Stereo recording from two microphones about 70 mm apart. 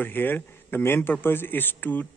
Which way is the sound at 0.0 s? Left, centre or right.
Left.